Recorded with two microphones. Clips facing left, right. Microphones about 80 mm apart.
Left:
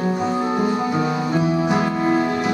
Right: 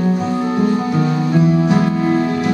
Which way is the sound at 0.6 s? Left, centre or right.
Centre.